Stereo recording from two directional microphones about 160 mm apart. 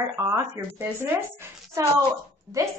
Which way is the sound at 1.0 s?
15° right (ahead or behind).